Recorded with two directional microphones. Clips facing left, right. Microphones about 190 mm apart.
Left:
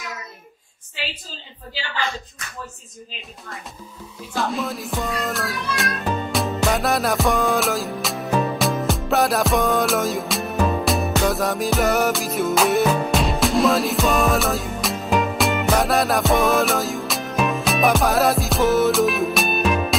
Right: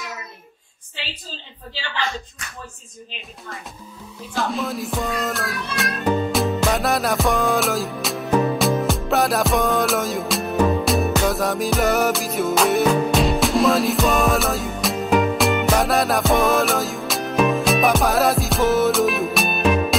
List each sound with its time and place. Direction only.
4.4 s music: centre (ahead or behind)